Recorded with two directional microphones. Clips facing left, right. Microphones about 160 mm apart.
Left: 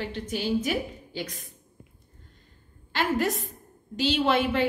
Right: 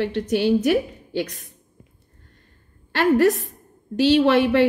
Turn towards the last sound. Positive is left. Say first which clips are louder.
# right 8 dB
turn(degrees=-65)  # may be behind; listen again after turning